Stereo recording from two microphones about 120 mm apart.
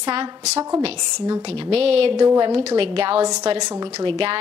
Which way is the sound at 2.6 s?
50° right (ahead or behind).